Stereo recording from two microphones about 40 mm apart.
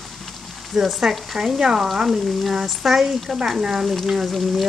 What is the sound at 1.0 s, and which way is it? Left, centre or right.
Speech, centre.